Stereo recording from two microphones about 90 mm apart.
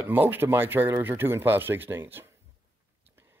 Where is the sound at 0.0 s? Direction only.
25° right (ahead or behind).